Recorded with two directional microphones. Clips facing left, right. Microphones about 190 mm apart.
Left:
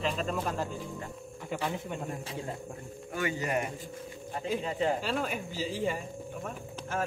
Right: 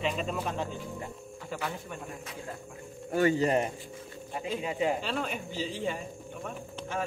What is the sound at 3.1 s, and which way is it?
Speech, 40° right (ahead or behind).